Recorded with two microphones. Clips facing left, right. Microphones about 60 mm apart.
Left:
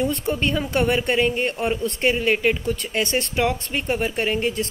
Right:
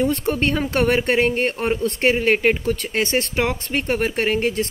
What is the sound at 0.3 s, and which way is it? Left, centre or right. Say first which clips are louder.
Speech: right 2 dB; right.